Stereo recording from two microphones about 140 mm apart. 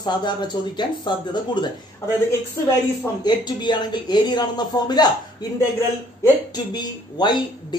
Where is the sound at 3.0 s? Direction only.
30° left (ahead or behind).